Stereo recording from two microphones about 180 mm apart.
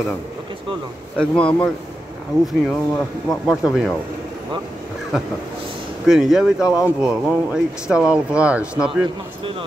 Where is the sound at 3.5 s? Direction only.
5° right (ahead or behind).